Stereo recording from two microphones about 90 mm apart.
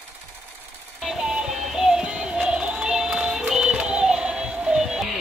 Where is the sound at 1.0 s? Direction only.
5° right (ahead or behind).